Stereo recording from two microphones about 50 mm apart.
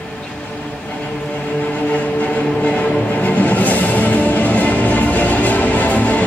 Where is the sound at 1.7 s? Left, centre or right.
Left.